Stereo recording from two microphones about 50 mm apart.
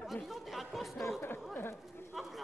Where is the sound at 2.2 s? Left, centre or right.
Centre.